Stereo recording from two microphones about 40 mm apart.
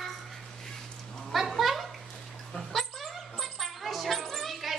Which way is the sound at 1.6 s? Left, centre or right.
Centre.